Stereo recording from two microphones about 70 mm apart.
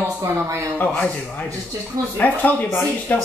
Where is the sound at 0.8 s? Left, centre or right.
Left.